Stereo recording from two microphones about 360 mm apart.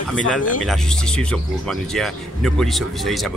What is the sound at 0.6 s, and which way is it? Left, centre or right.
Speech, centre.